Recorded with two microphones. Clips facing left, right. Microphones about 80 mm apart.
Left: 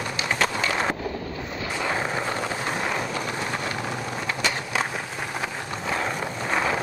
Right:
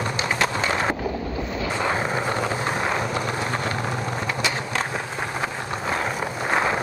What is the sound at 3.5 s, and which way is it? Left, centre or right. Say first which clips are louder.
Vehicle: right 3 dB; right.